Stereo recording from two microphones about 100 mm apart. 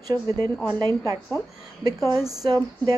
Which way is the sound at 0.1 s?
40° right (ahead or behind).